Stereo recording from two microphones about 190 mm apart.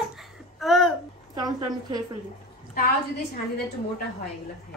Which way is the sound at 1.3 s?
20° right (ahead or behind).